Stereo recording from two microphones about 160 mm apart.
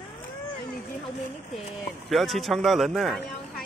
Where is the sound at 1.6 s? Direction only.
Centre (ahead or behind).